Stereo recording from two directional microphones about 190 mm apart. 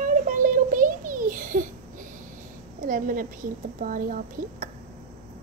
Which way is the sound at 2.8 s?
45° right (ahead or behind).